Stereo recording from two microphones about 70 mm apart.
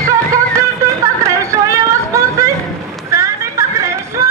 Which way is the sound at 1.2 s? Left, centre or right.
Right.